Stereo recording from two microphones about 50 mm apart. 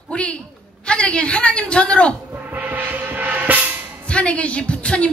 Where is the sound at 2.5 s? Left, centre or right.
Right.